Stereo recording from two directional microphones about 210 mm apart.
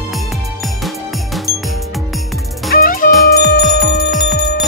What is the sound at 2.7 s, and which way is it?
Music, 40° left (ahead or behind).